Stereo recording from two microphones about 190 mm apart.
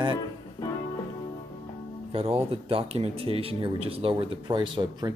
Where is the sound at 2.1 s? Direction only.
30° right (ahead or behind).